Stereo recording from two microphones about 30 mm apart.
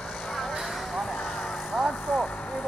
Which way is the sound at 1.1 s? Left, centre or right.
Left.